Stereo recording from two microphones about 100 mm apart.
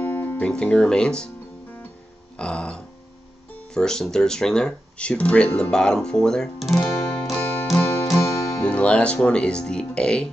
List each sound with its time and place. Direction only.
0.0 s music: 20° left (ahead or behind)
0.5 s speech: 10° left (ahead or behind)
2.3 s speech: 10° left (ahead or behind)
8.6 s speech: 10° left (ahead or behind)